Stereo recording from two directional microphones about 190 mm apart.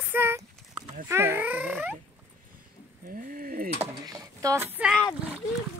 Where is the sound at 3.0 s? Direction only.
45° right (ahead or behind).